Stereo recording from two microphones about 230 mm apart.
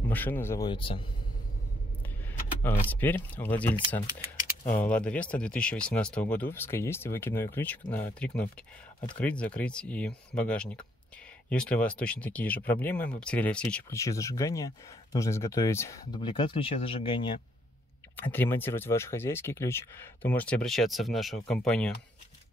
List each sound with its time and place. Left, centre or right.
0.1 s speech: centre
2.6 s speech: centre
18.1 s speech: centre